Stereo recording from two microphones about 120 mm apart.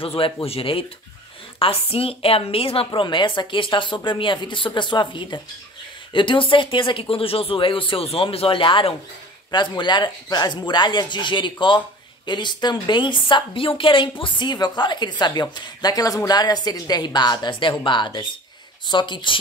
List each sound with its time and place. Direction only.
0.0 s speech: 50° left (ahead or behind)
2.9 s a woman's voice: 40° left (ahead or behind)